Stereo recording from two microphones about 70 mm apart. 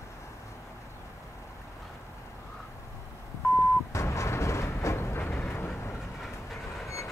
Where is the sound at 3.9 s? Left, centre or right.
Left.